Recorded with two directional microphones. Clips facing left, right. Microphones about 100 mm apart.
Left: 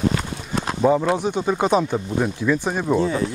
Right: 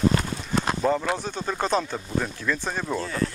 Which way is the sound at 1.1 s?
15° left (ahead or behind).